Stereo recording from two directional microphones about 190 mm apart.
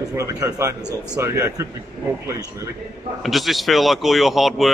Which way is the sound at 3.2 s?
Centre (ahead or behind).